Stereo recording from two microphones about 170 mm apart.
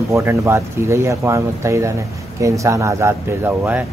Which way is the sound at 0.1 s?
15° right (ahead or behind).